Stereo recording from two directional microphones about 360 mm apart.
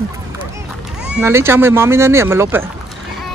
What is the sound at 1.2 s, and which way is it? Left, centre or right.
Speech, centre.